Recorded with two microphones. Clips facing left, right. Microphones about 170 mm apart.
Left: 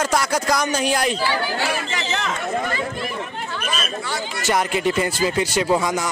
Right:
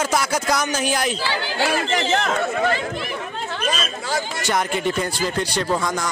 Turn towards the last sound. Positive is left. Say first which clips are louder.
# left 3 dB
turn(degrees=10)  # may be behind; listen again after turning